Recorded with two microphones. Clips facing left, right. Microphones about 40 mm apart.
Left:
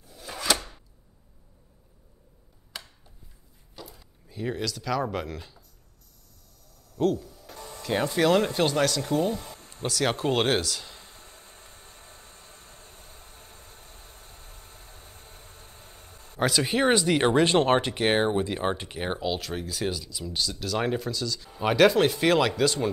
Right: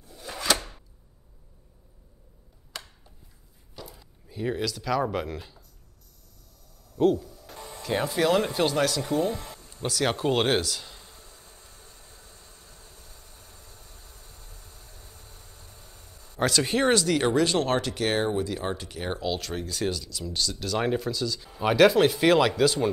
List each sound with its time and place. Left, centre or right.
0.0 s chopping: centre
3.7 s speech: centre
6.9 s a sound: centre
7.8 s speech: centre
11.0 s vehicle: left
16.3 s speech: centre
17.0 s speech: left
17.3 s speech: left
19.1 s speech: centre